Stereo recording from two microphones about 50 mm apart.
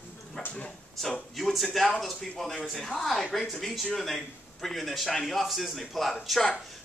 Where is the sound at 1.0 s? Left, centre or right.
Centre.